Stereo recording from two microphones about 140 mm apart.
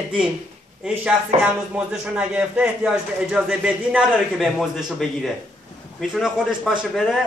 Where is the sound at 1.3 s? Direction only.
50° right (ahead or behind).